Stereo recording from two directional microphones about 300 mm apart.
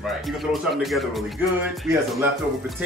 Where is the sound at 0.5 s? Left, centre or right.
Centre.